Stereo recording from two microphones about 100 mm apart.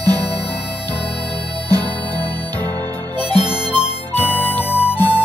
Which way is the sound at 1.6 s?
15° left (ahead or behind).